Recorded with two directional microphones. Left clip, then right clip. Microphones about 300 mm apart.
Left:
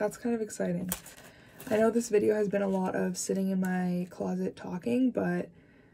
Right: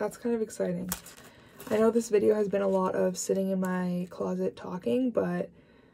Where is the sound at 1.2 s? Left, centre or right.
Centre.